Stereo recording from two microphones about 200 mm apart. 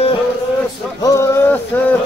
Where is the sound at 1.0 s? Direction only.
15° left (ahead or behind).